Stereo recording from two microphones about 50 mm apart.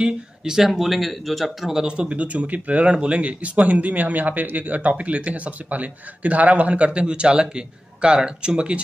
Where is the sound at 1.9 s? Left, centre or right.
Right.